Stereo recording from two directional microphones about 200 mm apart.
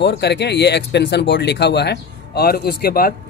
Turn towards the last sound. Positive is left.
turn(degrees=50)  # may be behind; listen again after turning